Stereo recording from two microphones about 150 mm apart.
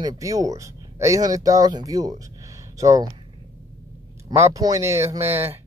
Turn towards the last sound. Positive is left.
turn(degrees=-15)  # may be behind; listen again after turning